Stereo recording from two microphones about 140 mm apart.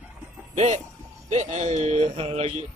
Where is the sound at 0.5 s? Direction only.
55° right (ahead or behind).